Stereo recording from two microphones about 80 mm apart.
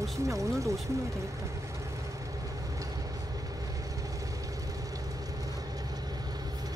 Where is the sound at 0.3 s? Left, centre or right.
Right.